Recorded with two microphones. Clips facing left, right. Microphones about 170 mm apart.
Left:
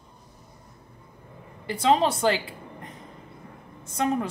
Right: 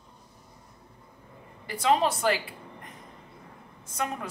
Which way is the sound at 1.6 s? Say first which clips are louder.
Left 3 dB; 25° left (ahead or behind).